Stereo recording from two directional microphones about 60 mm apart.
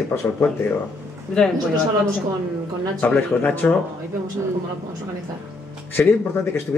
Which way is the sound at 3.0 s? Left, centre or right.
Left.